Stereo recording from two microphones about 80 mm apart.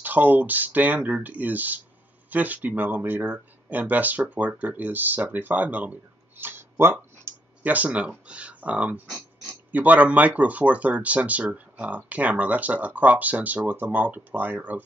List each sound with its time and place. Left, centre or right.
0.0 s speech: right